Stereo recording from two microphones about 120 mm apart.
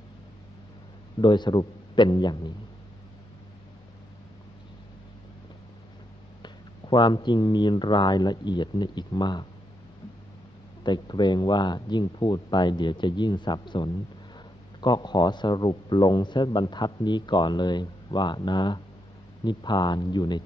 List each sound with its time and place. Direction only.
1.2 s speech: 40° left (ahead or behind)
6.4 s speech: 40° left (ahead or behind)
10.8 s speech: 40° left (ahead or behind)